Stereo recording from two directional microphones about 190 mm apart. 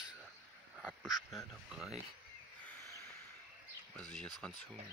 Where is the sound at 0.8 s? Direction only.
Centre (ahead or behind).